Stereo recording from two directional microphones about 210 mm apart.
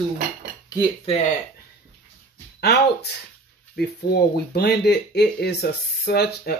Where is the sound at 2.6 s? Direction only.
50° left (ahead or behind).